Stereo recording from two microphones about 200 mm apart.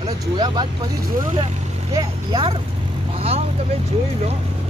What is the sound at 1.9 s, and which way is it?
Speech, 25° right (ahead or behind).